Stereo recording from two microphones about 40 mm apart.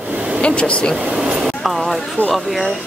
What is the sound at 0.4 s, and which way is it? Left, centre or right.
Speech, left.